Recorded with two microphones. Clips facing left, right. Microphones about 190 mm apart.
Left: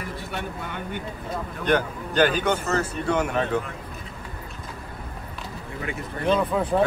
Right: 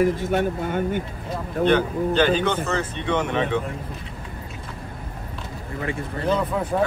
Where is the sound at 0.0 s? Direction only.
45° right (ahead or behind).